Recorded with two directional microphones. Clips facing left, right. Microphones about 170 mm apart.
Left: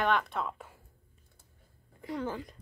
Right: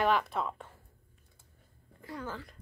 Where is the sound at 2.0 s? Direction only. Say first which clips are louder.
Left 5 dB; 20° left (ahead or behind).